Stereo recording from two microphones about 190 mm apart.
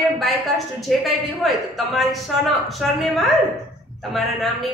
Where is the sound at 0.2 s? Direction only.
Centre (ahead or behind).